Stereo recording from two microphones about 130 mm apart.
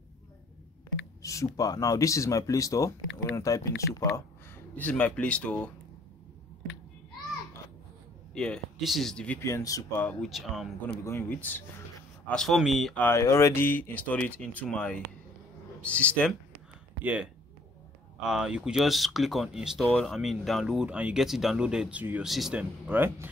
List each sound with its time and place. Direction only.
1.2 s speech: 25° left (ahead or behind)
4.7 s speech: 10° left (ahead or behind)
8.4 s speech: centre (ahead or behind)
9.4 s speech: 25° left (ahead or behind)
10.0 s speech: centre (ahead or behind)
11.1 s speech: 15° left (ahead or behind)
12.3 s speech: 5° left (ahead or behind)
12.9 s speech: 15° left (ahead or behind)
17.0 s speech: 10° right (ahead or behind)